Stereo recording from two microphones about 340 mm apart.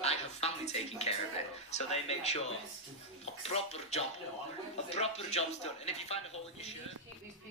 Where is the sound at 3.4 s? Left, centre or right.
Centre.